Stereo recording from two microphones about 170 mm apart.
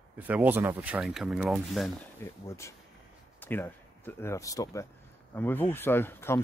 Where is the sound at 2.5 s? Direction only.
15° left (ahead or behind).